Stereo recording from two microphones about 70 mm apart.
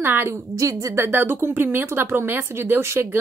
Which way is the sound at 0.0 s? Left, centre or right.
Right.